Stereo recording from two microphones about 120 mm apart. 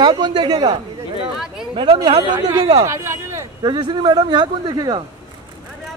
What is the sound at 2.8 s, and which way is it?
Speech, 25° right (ahead or behind).